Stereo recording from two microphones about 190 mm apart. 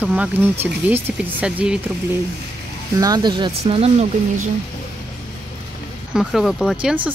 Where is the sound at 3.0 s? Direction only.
20° right (ahead or behind).